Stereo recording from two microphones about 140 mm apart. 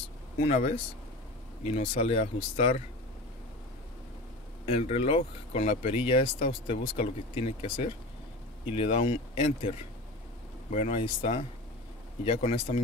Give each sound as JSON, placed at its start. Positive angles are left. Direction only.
{"t": 0.4, "sound": "speech", "side_deg": 50}
{"t": 4.6, "sound": "speech", "side_deg": 45}
{"t": 10.7, "sound": "speech", "side_deg": 55}
{"t": 12.3, "sound": "speech", "side_deg": 45}